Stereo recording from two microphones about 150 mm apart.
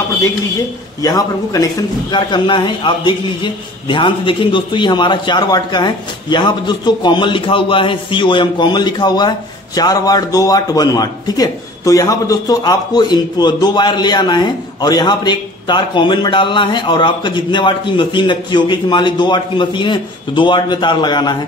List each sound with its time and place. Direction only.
1.0 s a man's voice: 25° left (ahead or behind)